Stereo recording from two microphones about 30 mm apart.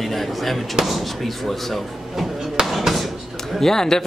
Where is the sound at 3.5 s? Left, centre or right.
Centre.